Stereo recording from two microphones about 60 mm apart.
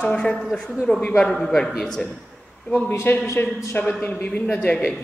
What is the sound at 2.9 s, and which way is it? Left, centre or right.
A man's voice, left.